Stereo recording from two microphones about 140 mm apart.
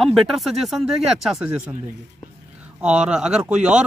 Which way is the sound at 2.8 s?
10° right (ahead or behind).